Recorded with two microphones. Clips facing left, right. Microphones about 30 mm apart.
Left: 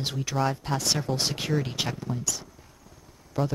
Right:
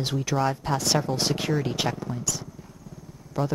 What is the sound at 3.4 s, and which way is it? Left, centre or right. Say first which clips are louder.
Speech: even; centre.